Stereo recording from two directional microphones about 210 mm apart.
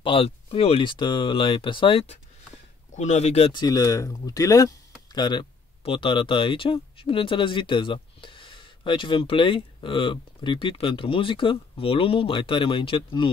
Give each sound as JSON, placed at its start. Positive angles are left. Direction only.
{"t": 0.0, "sound": "speech", "side_deg": 25}